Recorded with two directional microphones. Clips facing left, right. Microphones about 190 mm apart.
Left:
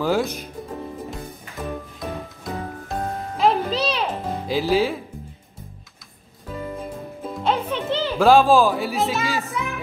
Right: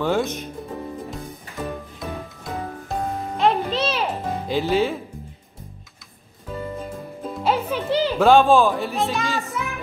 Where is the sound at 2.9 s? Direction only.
Centre (ahead or behind).